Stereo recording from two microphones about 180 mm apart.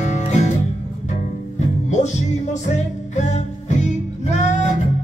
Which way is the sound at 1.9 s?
40° left (ahead or behind).